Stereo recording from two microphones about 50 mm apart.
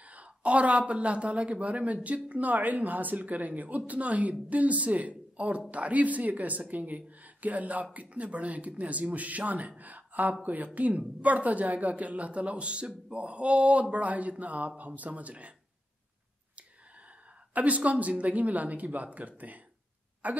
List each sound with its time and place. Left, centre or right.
0.0 s a woman's voice: right
17.6 s speech: right